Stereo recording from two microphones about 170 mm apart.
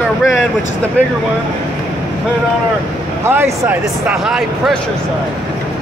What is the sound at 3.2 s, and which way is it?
Speech, 15° right (ahead or behind).